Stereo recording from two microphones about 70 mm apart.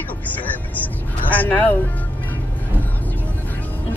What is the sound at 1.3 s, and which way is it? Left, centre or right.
Speech, left.